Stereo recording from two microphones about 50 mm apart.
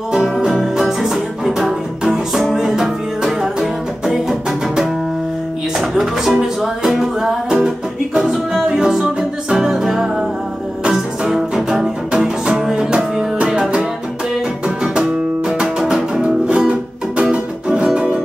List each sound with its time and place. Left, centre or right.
0.5 s music: centre
14.8 s music: centre